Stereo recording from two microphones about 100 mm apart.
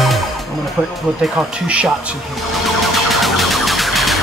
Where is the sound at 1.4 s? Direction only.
10° right (ahead or behind).